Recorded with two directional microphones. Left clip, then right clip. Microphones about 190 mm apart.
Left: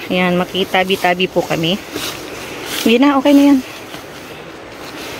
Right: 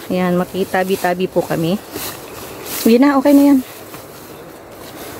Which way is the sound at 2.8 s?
30° right (ahead or behind).